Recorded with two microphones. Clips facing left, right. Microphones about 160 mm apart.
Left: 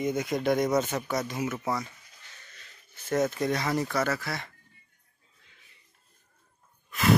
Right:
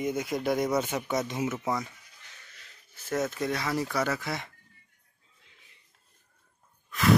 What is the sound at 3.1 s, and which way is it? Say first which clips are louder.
Speech: left 3 dB; centre (ahead or behind).